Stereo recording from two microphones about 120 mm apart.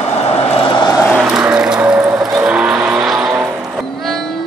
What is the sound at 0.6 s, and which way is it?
Vehicle, 40° left (ahead or behind).